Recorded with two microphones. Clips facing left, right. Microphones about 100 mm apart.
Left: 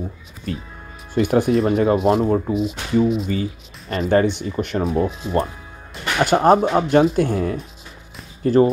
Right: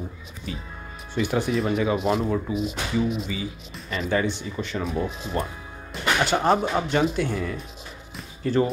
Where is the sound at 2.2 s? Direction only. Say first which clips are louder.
Left 6 dB; 40° left (ahead or behind).